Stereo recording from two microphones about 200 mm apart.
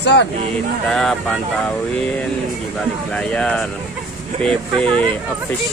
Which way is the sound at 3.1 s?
5° left (ahead or behind).